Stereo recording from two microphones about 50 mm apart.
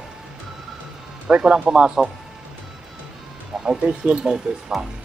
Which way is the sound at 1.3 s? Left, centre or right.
Centre.